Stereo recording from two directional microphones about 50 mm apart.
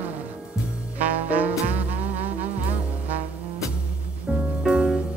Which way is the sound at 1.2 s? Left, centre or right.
Right.